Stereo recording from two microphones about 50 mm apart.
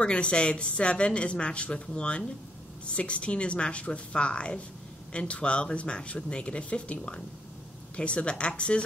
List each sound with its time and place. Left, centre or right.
0.0 s speech: left